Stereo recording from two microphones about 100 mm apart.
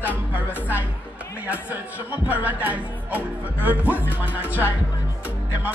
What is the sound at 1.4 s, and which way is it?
Speech, 15° right (ahead or behind).